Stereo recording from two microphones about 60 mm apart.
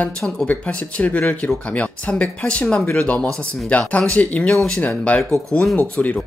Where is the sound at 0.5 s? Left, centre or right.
Left.